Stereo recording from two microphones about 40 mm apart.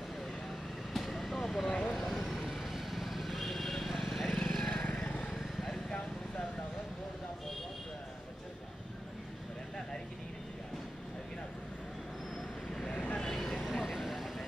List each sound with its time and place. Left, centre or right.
0.9 s vehicle: centre
12.9 s vehicle: left
13.3 s vehicle: centre